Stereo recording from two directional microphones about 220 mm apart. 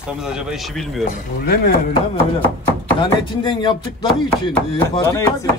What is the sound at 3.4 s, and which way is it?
Speech, 20° left (ahead or behind).